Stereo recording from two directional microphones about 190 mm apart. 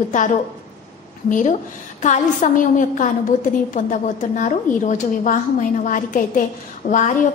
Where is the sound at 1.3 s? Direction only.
40° left (ahead or behind).